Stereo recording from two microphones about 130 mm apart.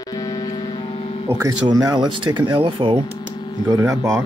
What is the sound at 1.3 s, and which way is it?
Speech, 25° right (ahead or behind).